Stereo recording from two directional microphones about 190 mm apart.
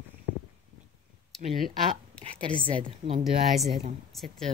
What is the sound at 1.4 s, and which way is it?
A woman's voice, 35° right (ahead or behind).